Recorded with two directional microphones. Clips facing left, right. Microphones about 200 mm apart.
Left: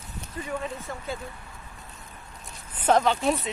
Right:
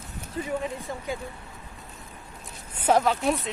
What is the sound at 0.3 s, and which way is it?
Speech, 20° right (ahead or behind).